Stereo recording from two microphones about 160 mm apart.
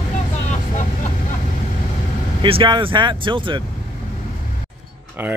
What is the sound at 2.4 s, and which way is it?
Speech, 30° right (ahead or behind).